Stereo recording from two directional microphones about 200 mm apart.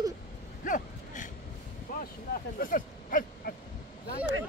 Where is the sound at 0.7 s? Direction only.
40° left (ahead or behind).